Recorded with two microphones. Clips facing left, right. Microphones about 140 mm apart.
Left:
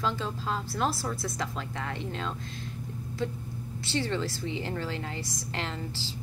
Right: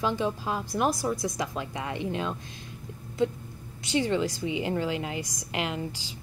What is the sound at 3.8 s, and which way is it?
A woman's voice, 15° right (ahead or behind).